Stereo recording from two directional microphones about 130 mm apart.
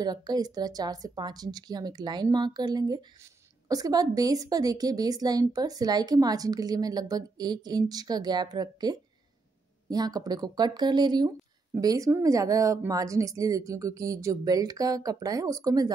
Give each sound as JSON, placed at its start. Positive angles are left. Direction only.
{"t": 0.0, "sound": "speech", "side_deg": -30}